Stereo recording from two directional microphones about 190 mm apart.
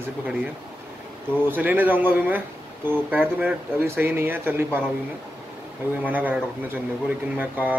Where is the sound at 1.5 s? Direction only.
10° right (ahead or behind).